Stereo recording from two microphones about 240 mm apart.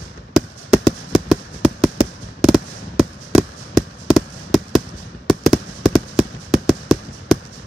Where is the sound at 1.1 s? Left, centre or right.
Centre.